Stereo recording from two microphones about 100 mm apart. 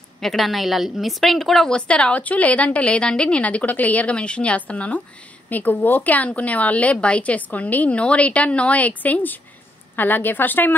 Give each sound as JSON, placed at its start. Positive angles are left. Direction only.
{"t": 0.2, "sound": "a woman's voice", "side_deg": 0}